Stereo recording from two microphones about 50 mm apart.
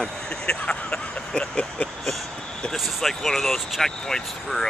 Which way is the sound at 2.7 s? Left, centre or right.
Centre.